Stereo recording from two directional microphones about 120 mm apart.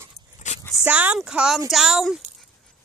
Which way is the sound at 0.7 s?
10° right (ahead or behind).